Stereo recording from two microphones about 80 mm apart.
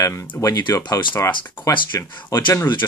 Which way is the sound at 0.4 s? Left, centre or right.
Left.